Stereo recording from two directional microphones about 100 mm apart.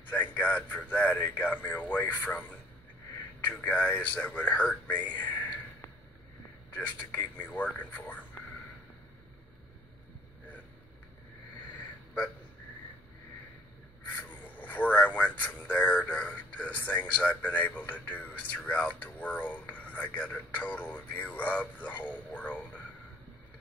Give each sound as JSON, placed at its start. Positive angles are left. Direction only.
{"t": 0.1, "sound": "speech", "side_deg": 15}
{"t": 14.6, "sound": "speech", "side_deg": 15}